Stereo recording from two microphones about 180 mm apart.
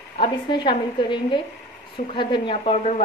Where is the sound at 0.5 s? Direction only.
25° left (ahead or behind).